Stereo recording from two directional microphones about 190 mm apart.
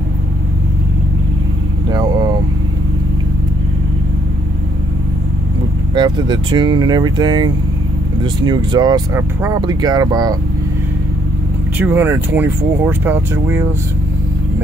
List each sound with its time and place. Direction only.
1.9 s vehicle: 20° right (ahead or behind)
5.9 s speech: 25° right (ahead or behind)
11.8 s speech: 10° right (ahead or behind)